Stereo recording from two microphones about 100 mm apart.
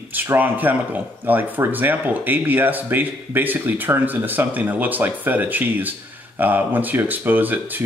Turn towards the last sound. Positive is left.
turn(degrees=-20)  # may be behind; listen again after turning